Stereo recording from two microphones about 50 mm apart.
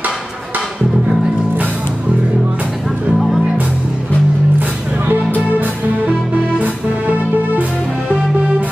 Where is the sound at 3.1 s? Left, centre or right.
Right.